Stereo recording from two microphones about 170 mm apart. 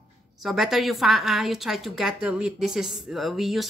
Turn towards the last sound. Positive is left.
turn(degrees=0)  # may be behind; listen again after turning